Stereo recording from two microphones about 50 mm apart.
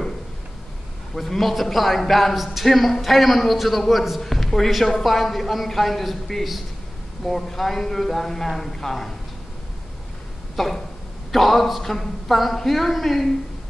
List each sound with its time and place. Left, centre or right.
1.1 s a man's voice: centre
10.5 s a man's voice: centre